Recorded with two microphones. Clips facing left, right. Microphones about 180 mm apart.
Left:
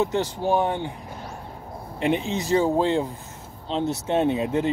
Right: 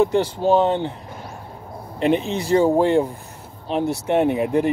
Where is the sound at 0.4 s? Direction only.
20° right (ahead or behind).